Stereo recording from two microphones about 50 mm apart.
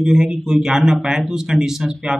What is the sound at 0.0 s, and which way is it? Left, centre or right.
A man's voice, centre.